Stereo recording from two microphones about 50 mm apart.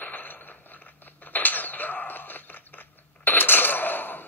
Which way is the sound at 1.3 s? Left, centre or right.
Left.